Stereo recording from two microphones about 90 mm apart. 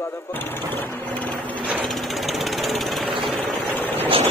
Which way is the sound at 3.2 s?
Centre (ahead or behind).